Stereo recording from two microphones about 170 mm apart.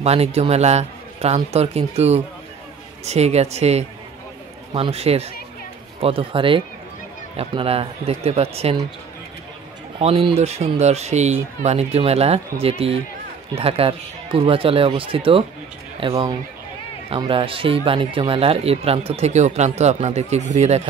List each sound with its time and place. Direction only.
0.0 s speech: 35° right (ahead or behind)
9.9 s speech: 35° right (ahead or behind)